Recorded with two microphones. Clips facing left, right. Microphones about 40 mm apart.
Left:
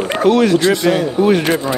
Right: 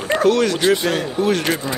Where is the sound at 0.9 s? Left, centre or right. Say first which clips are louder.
Left 6 dB; centre.